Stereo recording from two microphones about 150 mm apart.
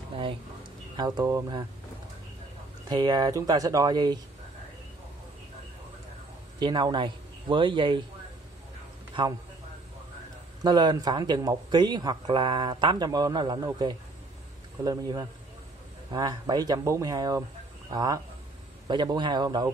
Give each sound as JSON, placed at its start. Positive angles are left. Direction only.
{"t": 0.9, "sound": "a man's voice", "side_deg": -25}
{"t": 2.9, "sound": "a man's voice", "side_deg": -30}
{"t": 6.6, "sound": "speech", "side_deg": -30}
{"t": 10.6, "sound": "a man's voice", "side_deg": -30}